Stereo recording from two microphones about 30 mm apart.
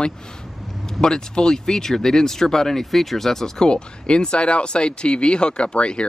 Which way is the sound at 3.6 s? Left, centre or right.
Left.